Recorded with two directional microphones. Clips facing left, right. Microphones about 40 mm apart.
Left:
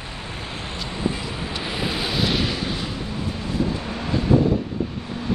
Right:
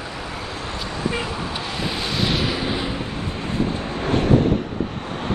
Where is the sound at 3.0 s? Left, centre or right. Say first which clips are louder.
Right 1 dB; right.